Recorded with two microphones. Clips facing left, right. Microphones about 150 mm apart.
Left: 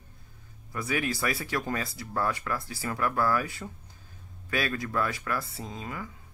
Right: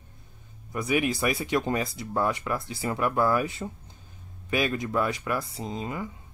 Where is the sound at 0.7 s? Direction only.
15° right (ahead or behind).